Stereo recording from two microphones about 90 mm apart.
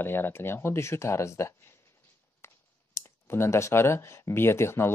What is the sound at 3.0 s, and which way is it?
Speech, 30° left (ahead or behind).